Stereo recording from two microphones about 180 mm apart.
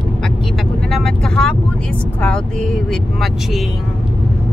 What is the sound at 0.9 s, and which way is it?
Vehicle, centre (ahead or behind).